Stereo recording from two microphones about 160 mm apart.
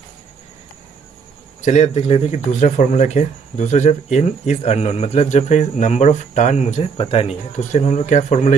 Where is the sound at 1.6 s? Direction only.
45° left (ahead or behind).